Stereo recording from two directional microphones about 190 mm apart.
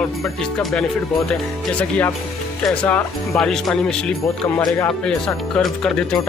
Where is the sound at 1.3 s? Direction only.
5° left (ahead or behind).